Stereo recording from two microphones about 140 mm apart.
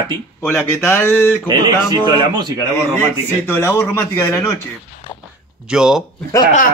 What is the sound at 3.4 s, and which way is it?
A man's voice, 15° left (ahead or behind).